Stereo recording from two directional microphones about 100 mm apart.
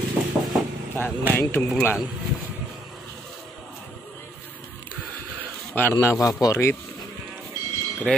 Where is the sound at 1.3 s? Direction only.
25° left (ahead or behind).